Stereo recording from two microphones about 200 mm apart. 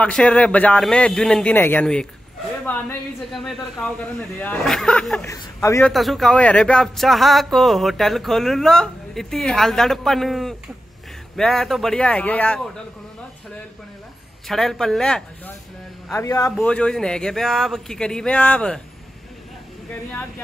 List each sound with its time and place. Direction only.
0.0 s speech: 5° left (ahead or behind)
5.2 s a man's voice: 15° left (ahead or behind)
5.9 s speech: centre (ahead or behind)
14.5 s speech: centre (ahead or behind)
16.1 s a man's voice: 15° left (ahead or behind)
16.5 s speech: 5° left (ahead or behind)
20.1 s a man's voice: 10° left (ahead or behind)